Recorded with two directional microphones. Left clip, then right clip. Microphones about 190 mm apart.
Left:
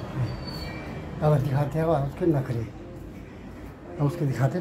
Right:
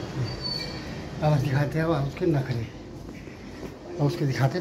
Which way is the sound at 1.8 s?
20° left (ahead or behind).